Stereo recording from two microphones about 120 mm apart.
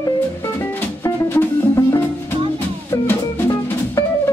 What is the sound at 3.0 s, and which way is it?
Music, 25° left (ahead or behind).